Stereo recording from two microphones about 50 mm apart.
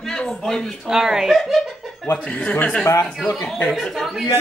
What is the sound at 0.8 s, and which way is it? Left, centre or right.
Speech, centre.